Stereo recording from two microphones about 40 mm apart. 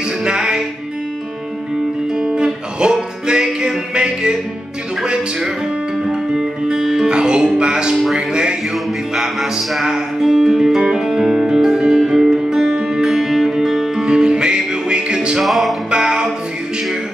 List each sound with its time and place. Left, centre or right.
0.2 s music: right
2.1 s music: centre
6.0 s music: centre
9.1 s music: centre
9.8 s music: centre
15.4 s music: centre
15.9 s music: centre